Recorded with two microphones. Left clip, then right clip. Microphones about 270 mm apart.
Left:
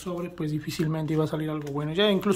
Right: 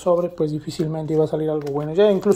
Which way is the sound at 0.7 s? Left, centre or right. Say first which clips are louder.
Right 6 dB; left.